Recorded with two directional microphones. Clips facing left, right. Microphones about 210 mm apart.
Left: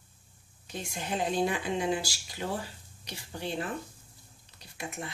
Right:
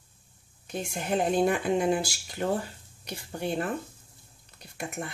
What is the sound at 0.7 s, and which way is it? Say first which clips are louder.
Speech: right 5 dB; 55° right (ahead or behind).